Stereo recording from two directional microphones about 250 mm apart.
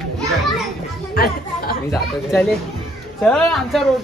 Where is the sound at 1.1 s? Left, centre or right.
Left.